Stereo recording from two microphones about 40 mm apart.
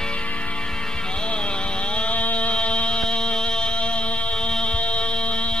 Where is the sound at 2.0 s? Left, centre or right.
Left.